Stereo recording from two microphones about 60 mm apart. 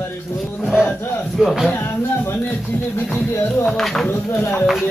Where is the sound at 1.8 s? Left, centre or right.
Left.